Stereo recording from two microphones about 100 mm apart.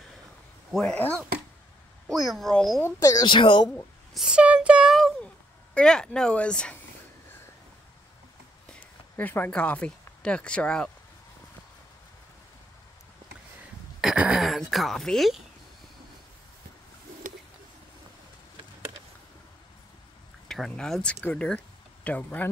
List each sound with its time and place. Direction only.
0.7 s speech: 5° left (ahead or behind)
0.9 s speech: 15° left (ahead or behind)
2.0 s a woman's voice: centre (ahead or behind)
2.8 s speech: 35° left (ahead or behind)
3.3 s a woman's voice: 55° left (ahead or behind)
4.1 s a sound: 5° right (ahead or behind)
5.8 s speech: 5° left (ahead or behind)
9.1 s speech: 20° left (ahead or behind)
14.0 s a sound: 10° right (ahead or behind)
14.4 s speech: centre (ahead or behind)
20.4 s speech: 5° left (ahead or behind)